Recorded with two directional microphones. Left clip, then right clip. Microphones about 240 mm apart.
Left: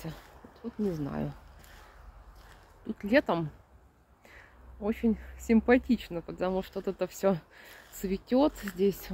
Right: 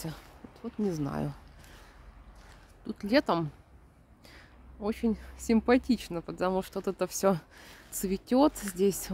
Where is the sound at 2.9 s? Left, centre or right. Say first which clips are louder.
Even; centre.